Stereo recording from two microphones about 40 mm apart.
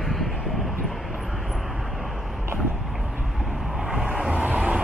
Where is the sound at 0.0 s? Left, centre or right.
Centre.